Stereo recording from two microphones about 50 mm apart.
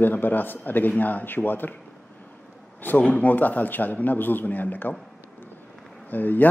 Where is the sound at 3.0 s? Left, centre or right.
Left.